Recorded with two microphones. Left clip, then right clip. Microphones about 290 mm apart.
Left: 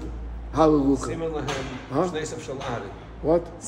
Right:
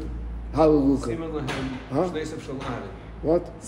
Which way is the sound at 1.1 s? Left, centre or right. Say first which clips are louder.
Left 2 dB; left.